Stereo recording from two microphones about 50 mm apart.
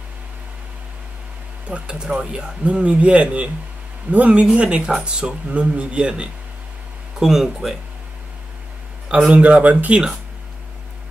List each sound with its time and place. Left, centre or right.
1.7 s speech: centre
7.2 s speech: centre
9.3 s speech: right